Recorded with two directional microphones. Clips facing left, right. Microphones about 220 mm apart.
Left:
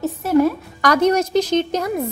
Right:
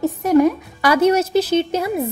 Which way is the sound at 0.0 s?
15° right (ahead or behind).